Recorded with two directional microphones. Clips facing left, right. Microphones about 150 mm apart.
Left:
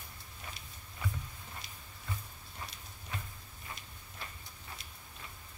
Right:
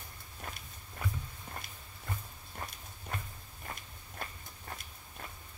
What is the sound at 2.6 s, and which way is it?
Walk, 50° right (ahead or behind).